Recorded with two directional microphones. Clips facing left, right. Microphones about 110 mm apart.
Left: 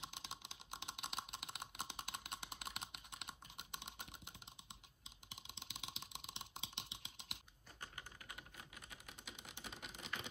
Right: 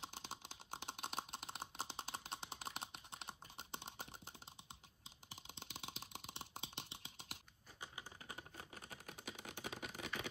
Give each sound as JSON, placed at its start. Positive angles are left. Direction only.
{"t": 0.0, "sound": "computer keyboard", "side_deg": -40}
{"t": 5.3, "sound": "a sound", "side_deg": -45}
{"t": 8.3, "sound": "typing", "side_deg": -40}